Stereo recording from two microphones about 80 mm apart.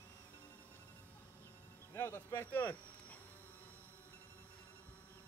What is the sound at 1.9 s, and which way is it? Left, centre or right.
Speech, left.